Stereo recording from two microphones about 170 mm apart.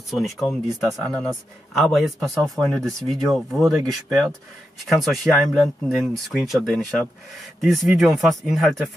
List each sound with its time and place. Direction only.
0.1 s speech: centre (ahead or behind)
4.8 s speech: centre (ahead or behind)